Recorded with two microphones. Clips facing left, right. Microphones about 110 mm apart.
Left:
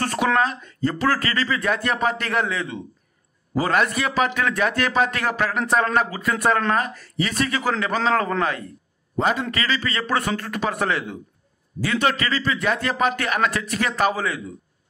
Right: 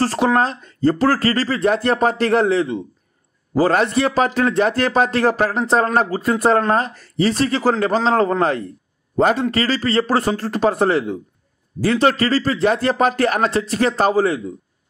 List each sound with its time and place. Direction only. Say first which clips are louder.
0.0 s speech: right 4 dB; 30° right (ahead or behind)